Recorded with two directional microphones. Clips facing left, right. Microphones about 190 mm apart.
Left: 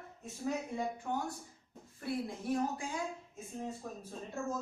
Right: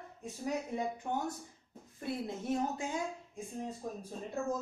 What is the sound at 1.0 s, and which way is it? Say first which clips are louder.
A woman's voice: right 1 dB; 25° right (ahead or behind).